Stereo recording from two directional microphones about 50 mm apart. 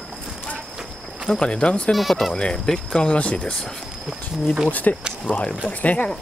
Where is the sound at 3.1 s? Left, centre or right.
Left.